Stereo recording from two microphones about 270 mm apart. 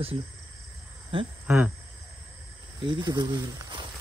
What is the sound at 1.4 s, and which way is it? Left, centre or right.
Speech, centre.